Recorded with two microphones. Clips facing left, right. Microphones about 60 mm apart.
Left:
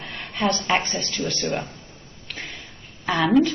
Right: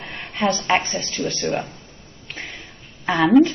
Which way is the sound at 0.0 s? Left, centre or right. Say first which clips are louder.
Right 2 dB; centre.